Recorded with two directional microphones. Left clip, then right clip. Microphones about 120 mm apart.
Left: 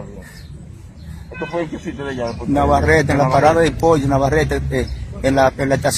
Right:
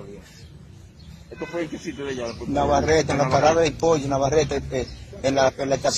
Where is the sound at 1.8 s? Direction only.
10° right (ahead or behind).